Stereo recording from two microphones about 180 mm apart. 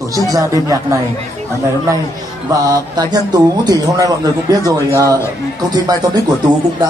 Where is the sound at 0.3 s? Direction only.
20° right (ahead or behind).